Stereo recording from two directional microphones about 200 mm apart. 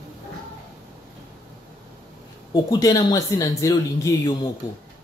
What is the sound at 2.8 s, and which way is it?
Speech, 15° left (ahead or behind).